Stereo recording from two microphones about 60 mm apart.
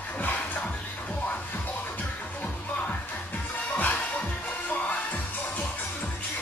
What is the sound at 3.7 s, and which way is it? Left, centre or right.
Music, left.